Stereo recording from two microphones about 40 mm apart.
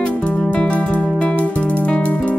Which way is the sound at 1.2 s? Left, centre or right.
Left.